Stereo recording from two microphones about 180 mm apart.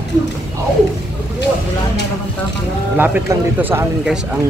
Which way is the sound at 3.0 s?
10° right (ahead or behind).